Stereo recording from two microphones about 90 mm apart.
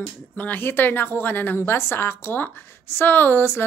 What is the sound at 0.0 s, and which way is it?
A woman's voice, 15° left (ahead or behind).